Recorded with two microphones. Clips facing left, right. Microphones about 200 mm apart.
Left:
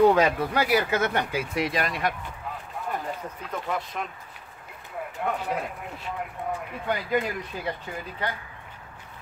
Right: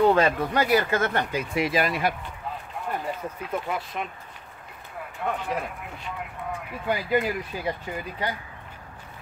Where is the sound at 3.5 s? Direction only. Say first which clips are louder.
Even; 5° right (ahead or behind).